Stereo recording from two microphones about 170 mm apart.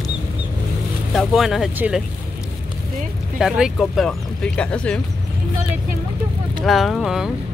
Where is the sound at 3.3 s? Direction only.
5° right (ahead or behind).